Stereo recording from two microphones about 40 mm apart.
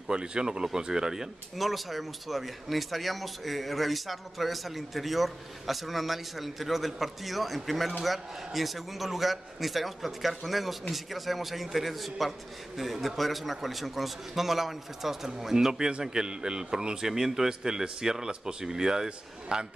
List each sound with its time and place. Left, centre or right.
0.1 s speech: right
1.6 s a man's voice: centre